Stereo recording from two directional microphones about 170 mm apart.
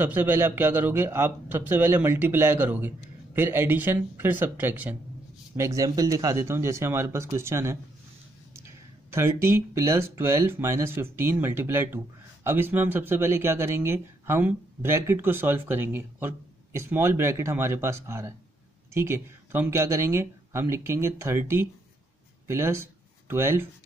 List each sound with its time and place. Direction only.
0.0 s speech: 10° right (ahead or behind)
9.1 s speech: 15° right (ahead or behind)